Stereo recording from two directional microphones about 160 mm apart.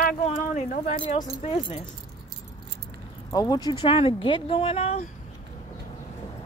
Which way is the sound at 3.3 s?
25° left (ahead or behind).